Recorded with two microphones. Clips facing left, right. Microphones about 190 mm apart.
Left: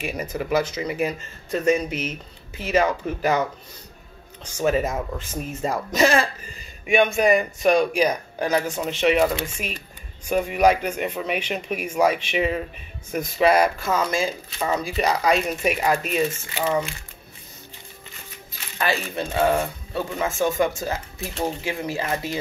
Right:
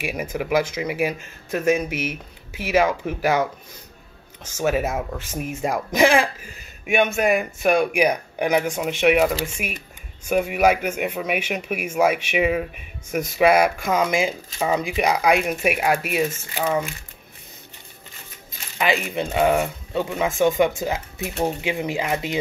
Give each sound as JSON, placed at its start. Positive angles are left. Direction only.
{"t": 0.0, "sound": "speech", "side_deg": -10}
{"t": 4.6, "sound": "speech", "side_deg": -5}
{"t": 18.8, "sound": "speech", "side_deg": -15}